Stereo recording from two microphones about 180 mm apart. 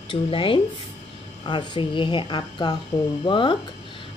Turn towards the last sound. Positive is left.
turn(degrees=25)  # may be behind; listen again after turning